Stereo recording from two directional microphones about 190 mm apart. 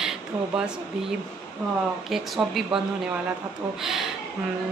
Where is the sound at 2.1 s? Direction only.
Centre (ahead or behind).